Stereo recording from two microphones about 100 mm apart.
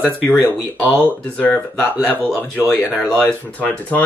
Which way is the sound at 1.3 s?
15° left (ahead or behind).